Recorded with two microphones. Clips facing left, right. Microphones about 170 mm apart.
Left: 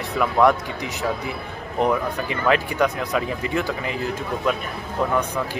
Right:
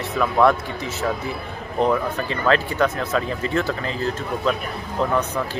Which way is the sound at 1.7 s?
15° left (ahead or behind).